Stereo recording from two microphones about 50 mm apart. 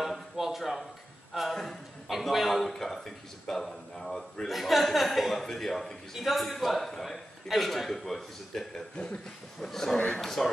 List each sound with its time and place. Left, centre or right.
0.0 s a sound: centre
0.6 s a man's voice: centre
8.9 s speech: left
9.6 s speech: centre
9.9 s speech: left
10.2 s speech: centre